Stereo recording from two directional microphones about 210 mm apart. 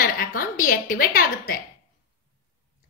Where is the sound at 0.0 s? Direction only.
40° left (ahead or behind).